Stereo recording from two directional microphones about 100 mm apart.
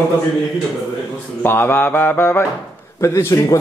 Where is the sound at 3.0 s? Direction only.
30° left (ahead or behind).